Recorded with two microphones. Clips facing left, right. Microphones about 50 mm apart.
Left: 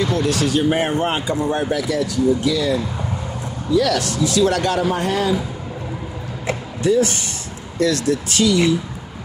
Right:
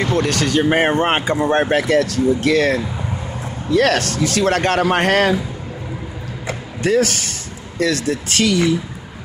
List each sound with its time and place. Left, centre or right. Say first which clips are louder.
0.0 s speech: right 1 dB; right
0.7 s speech: right 3 dB; right
4.8 s a man's voice: right 4 dB; right
6.8 s speech: right 1 dB; right
7.8 s speech: left 1 dB; right